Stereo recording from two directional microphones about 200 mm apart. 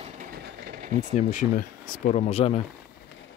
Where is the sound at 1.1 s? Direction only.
35° left (ahead or behind).